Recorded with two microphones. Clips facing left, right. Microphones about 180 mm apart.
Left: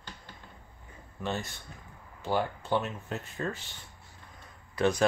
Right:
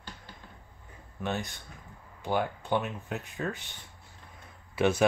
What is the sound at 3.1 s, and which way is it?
Speech, centre (ahead or behind).